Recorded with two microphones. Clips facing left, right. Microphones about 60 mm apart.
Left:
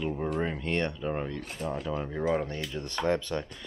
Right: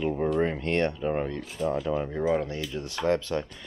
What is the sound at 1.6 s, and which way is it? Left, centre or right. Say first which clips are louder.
Speech: right 6 dB; left.